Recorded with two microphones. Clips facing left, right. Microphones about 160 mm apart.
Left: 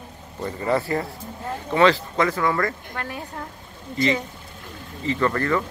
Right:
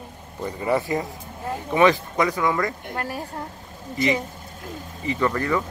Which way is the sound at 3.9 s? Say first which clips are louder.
Even; 20° right (ahead or behind).